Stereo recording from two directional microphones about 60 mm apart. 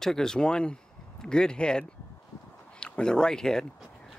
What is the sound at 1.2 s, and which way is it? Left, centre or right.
Speech, centre.